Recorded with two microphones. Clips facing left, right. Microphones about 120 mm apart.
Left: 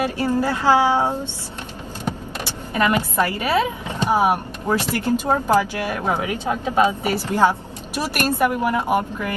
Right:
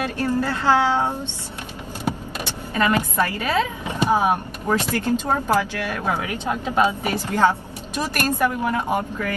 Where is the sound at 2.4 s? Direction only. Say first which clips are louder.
Left 1 dB; 15° left (ahead or behind).